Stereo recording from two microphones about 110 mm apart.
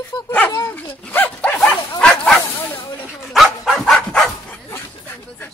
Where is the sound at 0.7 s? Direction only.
20° left (ahead or behind).